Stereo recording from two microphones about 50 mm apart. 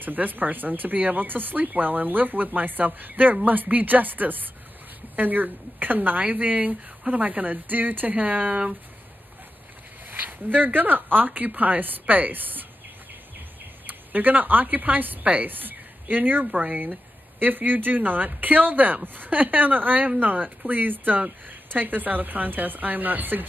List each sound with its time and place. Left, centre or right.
0.0 s speech: right
10.1 s speech: right
13.8 s a woman's voice: right
16.4 s speech: right
17.4 s speech: right